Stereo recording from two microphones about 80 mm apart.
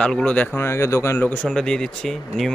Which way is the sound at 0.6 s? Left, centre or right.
Left.